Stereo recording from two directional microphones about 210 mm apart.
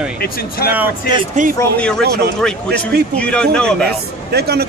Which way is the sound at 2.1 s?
50° right (ahead or behind).